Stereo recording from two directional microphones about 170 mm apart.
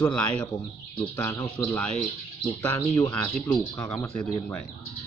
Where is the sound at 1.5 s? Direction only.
5° left (ahead or behind).